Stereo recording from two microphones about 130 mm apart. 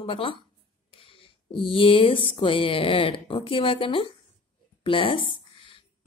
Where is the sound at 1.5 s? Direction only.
40° left (ahead or behind).